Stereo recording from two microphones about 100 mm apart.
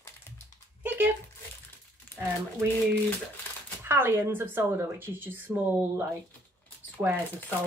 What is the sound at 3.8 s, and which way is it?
Speech, 20° right (ahead or behind).